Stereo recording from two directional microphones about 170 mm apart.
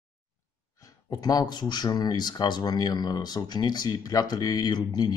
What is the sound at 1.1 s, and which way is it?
Speech, 20° left (ahead or behind).